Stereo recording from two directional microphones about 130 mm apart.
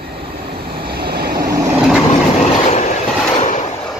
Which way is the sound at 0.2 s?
40° right (ahead or behind).